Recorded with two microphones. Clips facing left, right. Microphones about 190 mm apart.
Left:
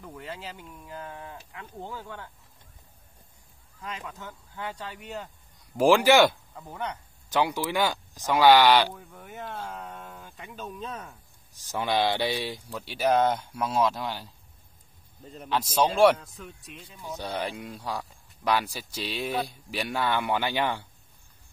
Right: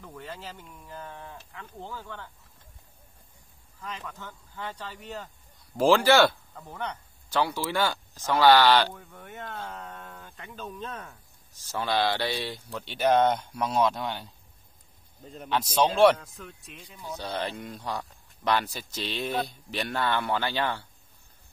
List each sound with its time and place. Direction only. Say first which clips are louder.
0.0 s a man's voice: left 1 dB; 5° left (ahead or behind)
3.8 s a man's voice: left 1 dB; 10° left (ahead or behind)
5.8 s a man's voice: left 1 dB; 15° left (ahead or behind)
6.5 s speech: left 1 dB; 5° left (ahead or behind)
7.2 s a man's voice: left 1 dB; 15° left (ahead or behind)
8.9 s speech: left 1 dB; 5° left (ahead or behind)
11.6 s speech: left 1 dB; 15° left (ahead or behind); by 17.0 s centre (ahead or behind)
17.0 s a man's voice: even; 15° left (ahead or behind)